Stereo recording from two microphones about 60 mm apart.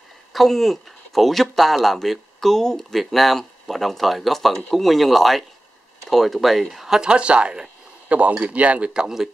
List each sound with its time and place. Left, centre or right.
0.3 s speech: centre
7.0 s speech: centre